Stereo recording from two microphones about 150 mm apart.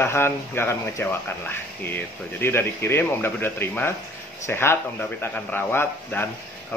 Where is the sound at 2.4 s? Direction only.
15° left (ahead or behind).